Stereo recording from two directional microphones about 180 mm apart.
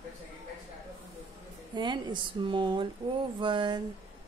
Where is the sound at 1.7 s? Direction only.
25° right (ahead or behind).